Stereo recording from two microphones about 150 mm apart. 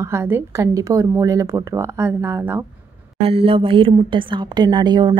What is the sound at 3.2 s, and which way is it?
A woman's voice, 40° right (ahead or behind).